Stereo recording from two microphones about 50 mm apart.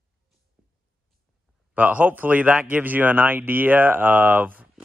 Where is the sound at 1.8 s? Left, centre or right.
Right.